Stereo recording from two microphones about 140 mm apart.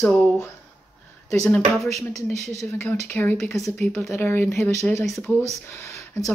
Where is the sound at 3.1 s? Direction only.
15° left (ahead or behind).